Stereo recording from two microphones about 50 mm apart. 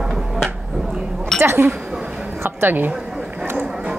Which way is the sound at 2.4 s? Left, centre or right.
Right.